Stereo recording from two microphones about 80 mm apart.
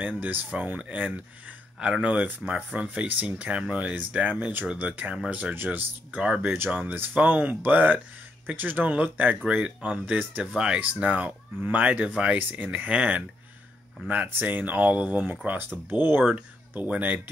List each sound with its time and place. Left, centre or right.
0.2 s speech: right
10.4 s speech: centre